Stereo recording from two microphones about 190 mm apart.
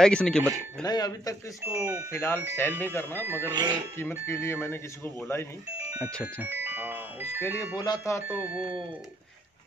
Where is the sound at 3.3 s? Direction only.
10° right (ahead or behind).